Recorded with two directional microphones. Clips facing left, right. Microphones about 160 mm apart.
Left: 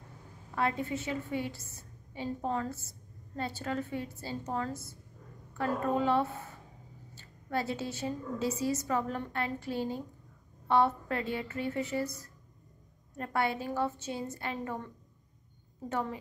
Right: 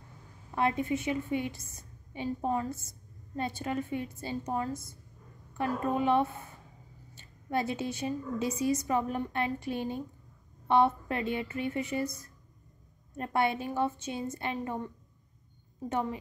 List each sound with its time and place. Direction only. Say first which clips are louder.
0.6 s a woman's voice: right 3 dB; 20° right (ahead or behind)
15.9 s a woman's voice: right 2 dB; 20° right (ahead or behind)